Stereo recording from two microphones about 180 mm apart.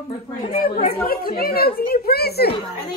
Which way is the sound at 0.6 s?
50° left (ahead or behind).